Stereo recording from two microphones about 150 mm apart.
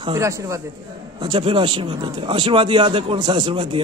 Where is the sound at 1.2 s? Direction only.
30° right (ahead or behind).